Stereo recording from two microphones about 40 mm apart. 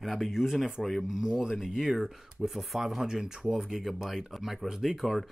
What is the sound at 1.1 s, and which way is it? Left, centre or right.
Speech, centre.